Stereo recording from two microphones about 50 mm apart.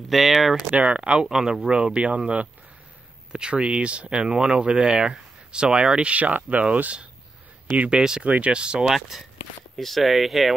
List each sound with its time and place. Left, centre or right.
0.1 s speech: centre
0.7 s speech: right
1.2 s speech: centre; by 7.1 s right
7.9 s speech: centre
8.2 s speech: right
8.8 s speech: centre